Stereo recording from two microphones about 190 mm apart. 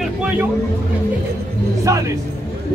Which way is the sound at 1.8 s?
15° right (ahead or behind).